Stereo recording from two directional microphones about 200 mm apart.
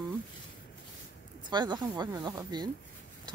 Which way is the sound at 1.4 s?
20° right (ahead or behind).